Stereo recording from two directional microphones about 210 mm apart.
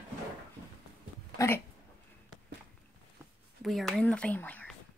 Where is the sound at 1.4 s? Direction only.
15° left (ahead or behind).